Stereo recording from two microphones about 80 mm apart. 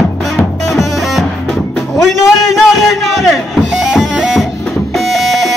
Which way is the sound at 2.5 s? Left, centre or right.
Centre.